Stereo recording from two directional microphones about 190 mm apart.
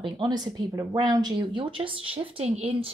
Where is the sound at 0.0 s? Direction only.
20° right (ahead or behind).